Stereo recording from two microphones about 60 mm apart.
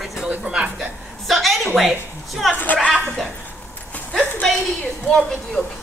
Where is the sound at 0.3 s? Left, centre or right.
Centre.